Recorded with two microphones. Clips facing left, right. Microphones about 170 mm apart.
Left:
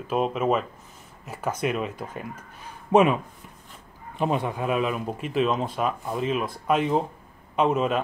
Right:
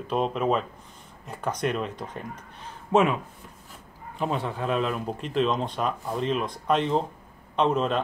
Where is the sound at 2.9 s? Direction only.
15° left (ahead or behind).